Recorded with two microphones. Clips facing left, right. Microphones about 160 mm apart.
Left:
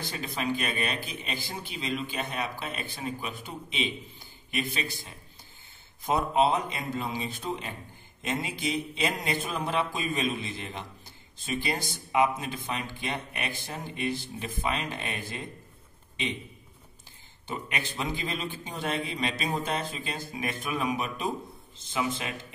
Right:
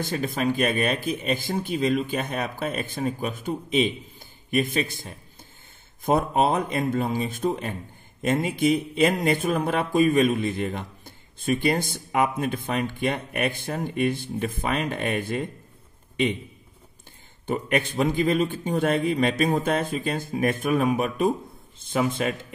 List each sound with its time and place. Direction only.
0.0 s speech: 50° right (ahead or behind)
17.5 s speech: 50° right (ahead or behind)